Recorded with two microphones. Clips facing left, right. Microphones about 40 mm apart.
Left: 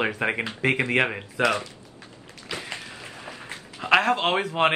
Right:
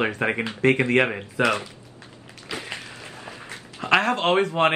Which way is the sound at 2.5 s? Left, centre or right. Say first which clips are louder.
Right 1 dB; centre.